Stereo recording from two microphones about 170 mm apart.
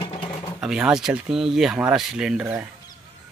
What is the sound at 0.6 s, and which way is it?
Speech, 5° right (ahead or behind).